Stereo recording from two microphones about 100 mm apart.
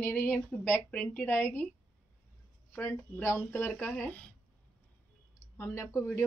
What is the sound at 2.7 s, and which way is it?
Speech, 25° left (ahead or behind).